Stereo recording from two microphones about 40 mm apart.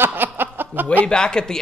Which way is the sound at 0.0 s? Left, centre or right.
Right.